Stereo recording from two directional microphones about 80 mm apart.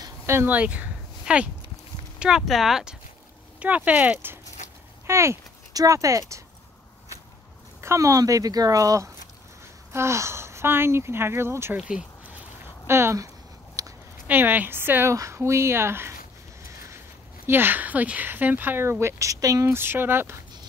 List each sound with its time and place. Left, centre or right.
0.5 s speech: centre
5.0 s speech: right
5.7 s speech: right
7.8 s speech: right
12.8 s speech: right
13.8 s a sound: right
14.2 s speech: right
15.1 s speech: right
17.5 s speech: right